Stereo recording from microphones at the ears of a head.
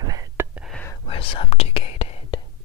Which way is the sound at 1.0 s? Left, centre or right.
Left.